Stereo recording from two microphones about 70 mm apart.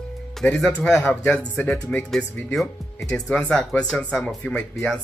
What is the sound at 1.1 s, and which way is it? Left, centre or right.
Speech, left.